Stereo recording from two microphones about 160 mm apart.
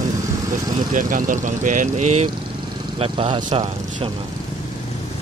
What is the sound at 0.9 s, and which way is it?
Speech, 55° right (ahead or behind).